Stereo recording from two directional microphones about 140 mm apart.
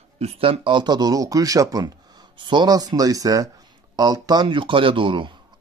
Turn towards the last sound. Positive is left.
turn(degrees=-35)  # may be behind; listen again after turning